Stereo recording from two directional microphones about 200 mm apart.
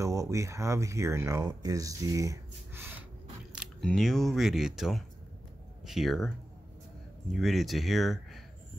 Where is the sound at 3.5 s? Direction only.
Centre (ahead or behind).